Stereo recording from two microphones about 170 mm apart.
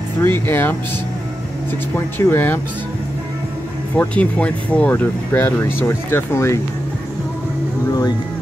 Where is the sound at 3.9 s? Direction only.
10° left (ahead or behind).